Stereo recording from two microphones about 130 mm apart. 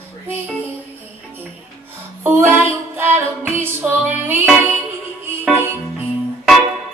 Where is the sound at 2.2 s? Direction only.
15° right (ahead or behind).